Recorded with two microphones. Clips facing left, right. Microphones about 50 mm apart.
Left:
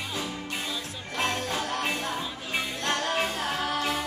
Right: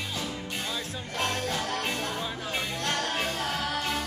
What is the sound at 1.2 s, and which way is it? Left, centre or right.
Jingle bell, centre.